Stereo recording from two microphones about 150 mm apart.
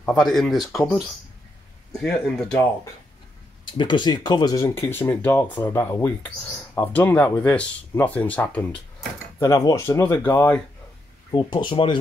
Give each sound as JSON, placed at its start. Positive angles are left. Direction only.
{"t": 0.0, "sound": "speech", "side_deg": 5}
{"t": 3.6, "sound": "speech", "side_deg": 30}
{"t": 9.4, "sound": "speech", "side_deg": 20}
{"t": 11.3, "sound": "speech", "side_deg": 30}